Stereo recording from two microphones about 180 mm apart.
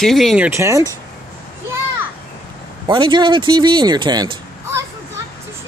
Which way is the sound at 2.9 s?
25° right (ahead or behind).